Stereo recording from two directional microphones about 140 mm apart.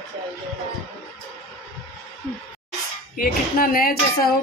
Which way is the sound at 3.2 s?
90° left.